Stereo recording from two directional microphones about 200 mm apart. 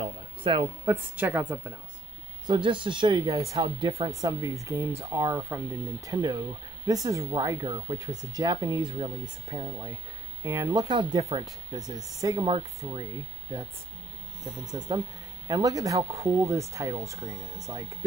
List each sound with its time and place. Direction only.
0.0 s a sound: 25° right (ahead or behind)
0.8 s speech: 10° right (ahead or behind)
2.4 s speech: 25° right (ahead or behind)
12.4 s speech: 25° right (ahead or behind)
14.6 s speech: 20° right (ahead or behind)